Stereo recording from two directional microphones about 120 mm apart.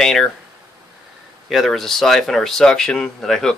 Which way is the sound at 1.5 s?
Centre (ahead or behind).